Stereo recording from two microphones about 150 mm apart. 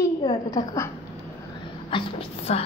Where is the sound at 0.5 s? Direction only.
20° left (ahead or behind).